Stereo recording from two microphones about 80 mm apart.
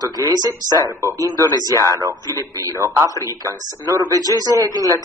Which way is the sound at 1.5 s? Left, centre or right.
Left.